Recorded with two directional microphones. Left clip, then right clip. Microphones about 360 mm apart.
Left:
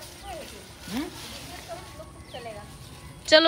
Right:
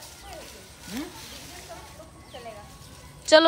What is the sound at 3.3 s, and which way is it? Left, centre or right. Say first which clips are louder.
Speech: right 1 dB; centre.